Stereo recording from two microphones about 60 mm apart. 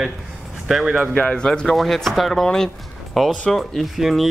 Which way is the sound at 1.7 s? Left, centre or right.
Centre.